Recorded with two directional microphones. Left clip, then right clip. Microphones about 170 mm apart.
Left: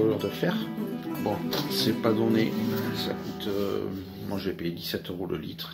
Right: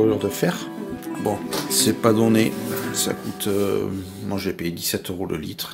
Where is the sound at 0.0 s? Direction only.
30° right (ahead or behind).